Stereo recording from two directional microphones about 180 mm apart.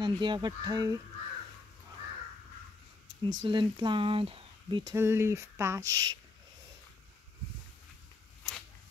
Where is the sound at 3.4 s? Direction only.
25° right (ahead or behind).